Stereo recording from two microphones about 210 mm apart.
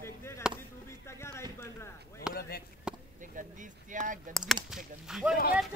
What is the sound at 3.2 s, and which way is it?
Speech, 40° right (ahead or behind).